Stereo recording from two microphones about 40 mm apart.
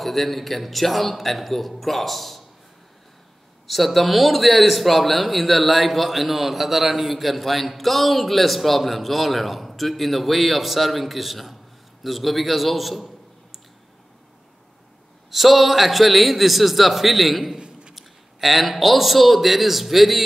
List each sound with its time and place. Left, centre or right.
0.0 s speech: centre
3.6 s a man's voice: centre
15.3 s speech: centre
17.6 s a sound: right
17.9 s a man's voice: centre